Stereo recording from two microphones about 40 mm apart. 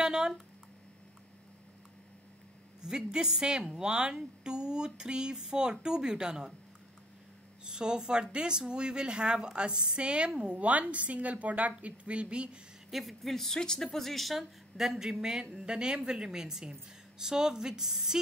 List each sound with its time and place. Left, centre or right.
0.0 s a sound: centre
2.8 s speech: centre
7.6 s speech: centre
12.9 s speech: centre